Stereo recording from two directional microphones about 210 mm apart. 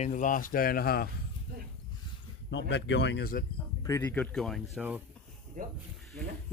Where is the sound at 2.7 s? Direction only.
55° left (ahead or behind).